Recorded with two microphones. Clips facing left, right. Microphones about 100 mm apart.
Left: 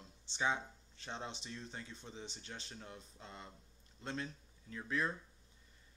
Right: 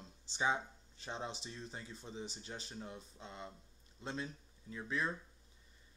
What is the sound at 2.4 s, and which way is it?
Speech, 20° right (ahead or behind).